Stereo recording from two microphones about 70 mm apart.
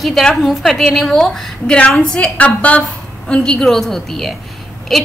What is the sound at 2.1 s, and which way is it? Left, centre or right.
A woman's voice, centre.